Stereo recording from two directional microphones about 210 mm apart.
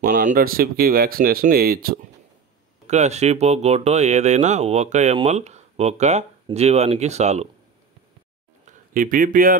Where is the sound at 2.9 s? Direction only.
30° right (ahead or behind).